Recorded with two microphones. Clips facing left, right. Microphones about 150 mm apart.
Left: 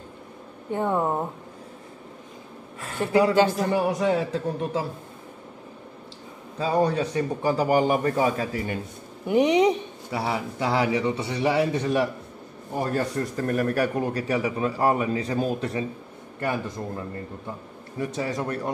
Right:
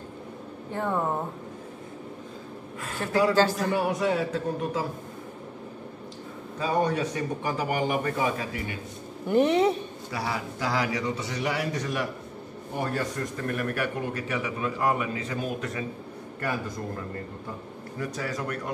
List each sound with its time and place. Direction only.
0.7 s speech: 20° left (ahead or behind)
3.0 s a man's voice: 20° left (ahead or behind)
3.5 s speech: 30° left (ahead or behind)
6.6 s speech: 30° left (ahead or behind)
9.3 s speech: 15° left (ahead or behind)
10.1 s a man's voice: 25° left (ahead or behind)
17.9 s a man's voice: 25° left (ahead or behind)